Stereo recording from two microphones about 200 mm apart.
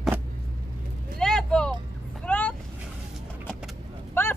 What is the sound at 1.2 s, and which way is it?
Vehicle, 5° left (ahead or behind).